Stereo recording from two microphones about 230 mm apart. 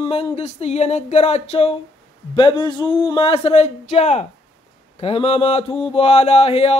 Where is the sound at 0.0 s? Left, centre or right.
Left.